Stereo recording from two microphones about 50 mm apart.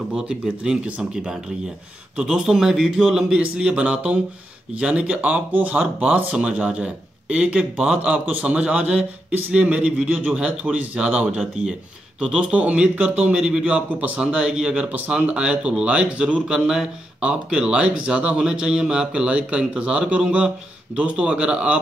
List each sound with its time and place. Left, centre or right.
0.1 s a man's voice: right
13.8 s a man's voice: right; by 14.9 s centre
14.9 s speech: right
16.5 s speech: centre